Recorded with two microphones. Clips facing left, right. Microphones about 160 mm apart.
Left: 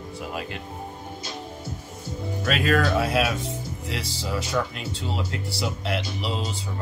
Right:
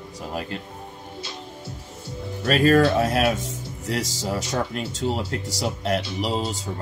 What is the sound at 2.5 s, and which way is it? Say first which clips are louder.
Speech: right 5 dB; 40° right (ahead or behind).